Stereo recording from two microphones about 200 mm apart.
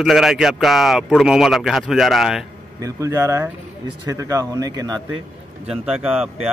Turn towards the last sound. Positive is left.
turn(degrees=-5)  # may be behind; listen again after turning